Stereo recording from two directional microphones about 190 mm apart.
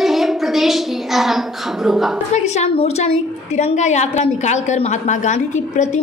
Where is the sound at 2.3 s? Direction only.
35° left (ahead or behind).